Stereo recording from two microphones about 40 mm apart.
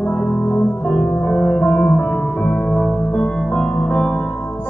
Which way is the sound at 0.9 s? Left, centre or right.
Centre.